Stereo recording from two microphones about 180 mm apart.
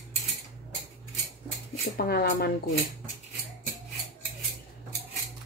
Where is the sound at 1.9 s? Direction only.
60° left (ahead or behind).